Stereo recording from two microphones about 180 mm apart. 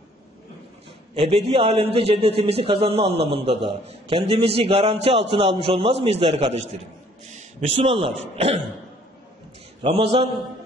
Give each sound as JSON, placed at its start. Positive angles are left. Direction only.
{"t": 1.1, "sound": "a man's voice", "side_deg": -30}
{"t": 7.7, "sound": "a man's voice", "side_deg": -30}
{"t": 9.8, "sound": "a man's voice", "side_deg": -30}